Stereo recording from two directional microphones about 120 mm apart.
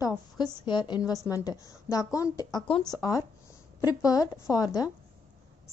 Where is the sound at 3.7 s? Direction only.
30° left (ahead or behind).